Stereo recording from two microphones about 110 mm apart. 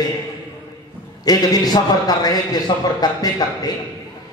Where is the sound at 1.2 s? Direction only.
35° left (ahead or behind).